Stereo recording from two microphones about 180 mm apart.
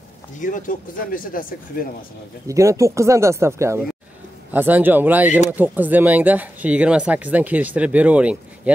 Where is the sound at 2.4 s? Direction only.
15° right (ahead or behind).